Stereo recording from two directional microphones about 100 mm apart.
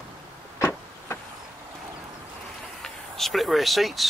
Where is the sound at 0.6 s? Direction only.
25° left (ahead or behind).